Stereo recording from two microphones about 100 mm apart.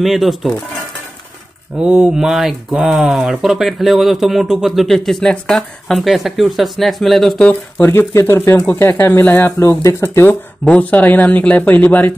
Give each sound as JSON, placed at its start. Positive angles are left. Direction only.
{"t": 0.0, "sound": "speech", "side_deg": 0}
{"t": 1.8, "sound": "speech", "side_deg": -10}
{"t": 7.7, "sound": "speech", "side_deg": 20}
{"t": 10.6, "sound": "speech", "side_deg": 15}